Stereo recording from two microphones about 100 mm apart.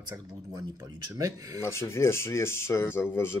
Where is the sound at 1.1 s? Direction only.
35° right (ahead or behind).